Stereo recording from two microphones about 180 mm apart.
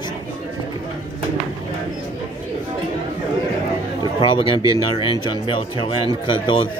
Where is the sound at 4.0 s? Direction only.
30° left (ahead or behind).